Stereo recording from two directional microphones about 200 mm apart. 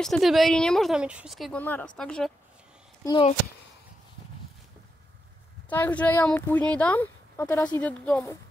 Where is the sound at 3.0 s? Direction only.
20° left (ahead or behind).